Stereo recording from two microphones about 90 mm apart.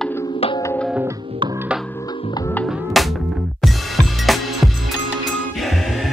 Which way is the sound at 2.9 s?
Centre (ahead or behind).